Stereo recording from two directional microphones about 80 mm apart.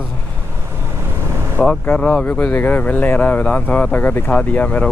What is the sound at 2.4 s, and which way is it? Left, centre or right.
Speech, left.